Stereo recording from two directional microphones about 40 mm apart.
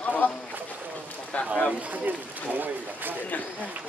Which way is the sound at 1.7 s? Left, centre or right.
Right.